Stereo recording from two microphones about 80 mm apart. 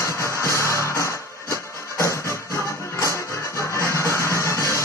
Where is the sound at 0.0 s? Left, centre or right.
Left.